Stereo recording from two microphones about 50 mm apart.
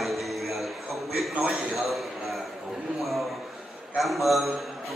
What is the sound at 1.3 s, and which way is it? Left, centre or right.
Speech, right.